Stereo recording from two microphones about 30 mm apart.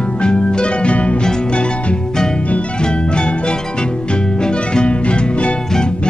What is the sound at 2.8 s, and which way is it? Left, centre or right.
Music, left.